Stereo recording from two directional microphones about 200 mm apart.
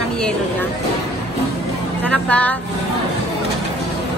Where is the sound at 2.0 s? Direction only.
5° left (ahead or behind).